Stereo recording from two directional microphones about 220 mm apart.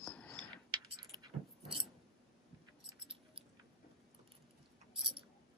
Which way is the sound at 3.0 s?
25° right (ahead or behind).